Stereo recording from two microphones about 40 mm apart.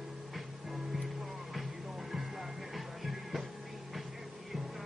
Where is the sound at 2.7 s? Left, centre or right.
Centre.